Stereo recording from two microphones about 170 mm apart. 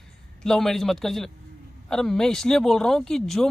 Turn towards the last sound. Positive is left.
turn(degrees=5)  # may be behind; listen again after turning